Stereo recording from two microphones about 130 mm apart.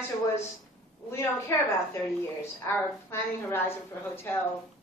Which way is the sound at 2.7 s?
20° left (ahead or behind).